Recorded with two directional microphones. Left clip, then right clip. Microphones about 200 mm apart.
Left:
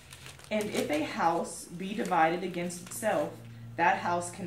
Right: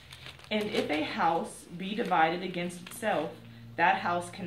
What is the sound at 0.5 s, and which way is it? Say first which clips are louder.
Speech: even; 25° right (ahead or behind).